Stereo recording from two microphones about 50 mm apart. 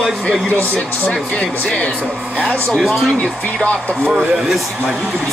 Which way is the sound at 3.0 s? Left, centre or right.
Centre.